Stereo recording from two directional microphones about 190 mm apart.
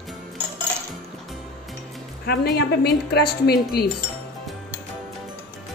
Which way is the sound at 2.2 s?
55° left (ahead or behind).